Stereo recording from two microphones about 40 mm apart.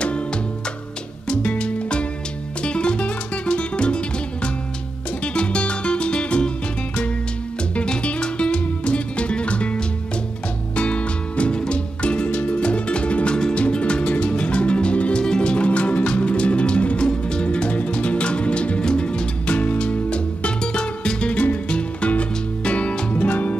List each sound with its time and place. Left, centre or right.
1.3 s music: left
7.7 s music: left
19.5 s music: left
23.1 s music: left